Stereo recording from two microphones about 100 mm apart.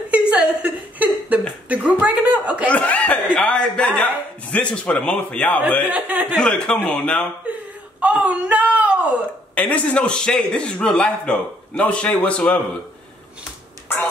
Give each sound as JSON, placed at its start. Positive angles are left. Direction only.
{"t": 0.1, "sound": "a sound", "side_deg": -10}
{"t": 2.7, "sound": "chuckle", "side_deg": 15}
{"t": 5.9, "sound": "speech", "side_deg": -15}
{"t": 6.3, "sound": "a man's voice", "side_deg": 5}
{"t": 8.0, "sound": "a sound", "side_deg": -15}
{"t": 9.6, "sound": "a man's voice", "side_deg": 15}